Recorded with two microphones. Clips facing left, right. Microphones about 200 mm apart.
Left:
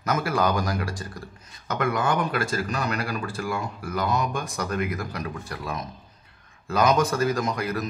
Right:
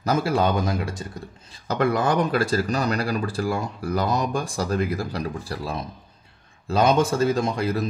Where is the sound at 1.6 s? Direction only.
35° right (ahead or behind).